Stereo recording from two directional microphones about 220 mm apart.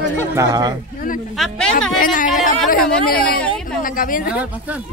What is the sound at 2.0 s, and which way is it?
Speech, 40° left (ahead or behind).